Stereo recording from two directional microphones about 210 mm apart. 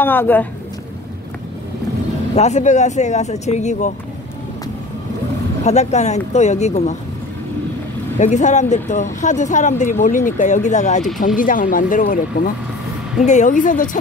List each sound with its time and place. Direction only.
0.0 s speech: 10° left (ahead or behind)
2.3 s speech: 35° left (ahead or behind)
5.6 s speech: 30° left (ahead or behind)
8.2 s speech: 35° left (ahead or behind)
13.2 s speech: 35° left (ahead or behind)